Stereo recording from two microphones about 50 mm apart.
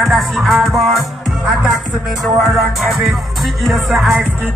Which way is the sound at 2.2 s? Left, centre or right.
Centre.